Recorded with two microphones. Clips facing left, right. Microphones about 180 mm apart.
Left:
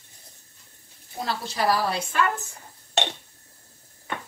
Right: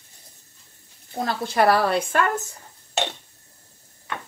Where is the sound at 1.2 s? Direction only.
55° right (ahead or behind).